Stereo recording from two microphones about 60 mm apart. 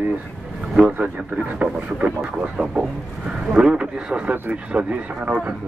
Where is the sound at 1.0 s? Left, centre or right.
Right.